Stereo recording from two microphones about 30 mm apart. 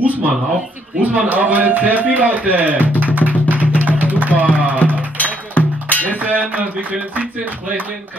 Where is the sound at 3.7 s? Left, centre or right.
Right.